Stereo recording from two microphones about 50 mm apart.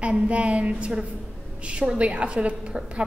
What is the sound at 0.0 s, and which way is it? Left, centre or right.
A woman's voice, right.